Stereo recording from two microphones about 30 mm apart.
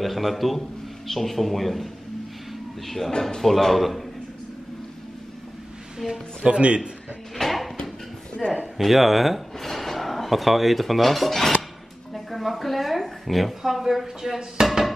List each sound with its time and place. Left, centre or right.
0.0 s speech: centre
3.1 s speech: left
3.3 s speech: centre
6.0 s speech: centre
6.4 s a man's voice: right
7.3 s a sound: centre
8.4 s a man's voice: centre
8.7 s speech: centre
9.6 s a woman's voice: centre
13.6 s speech: centre